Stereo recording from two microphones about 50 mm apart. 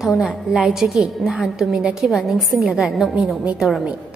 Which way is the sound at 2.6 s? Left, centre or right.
Centre.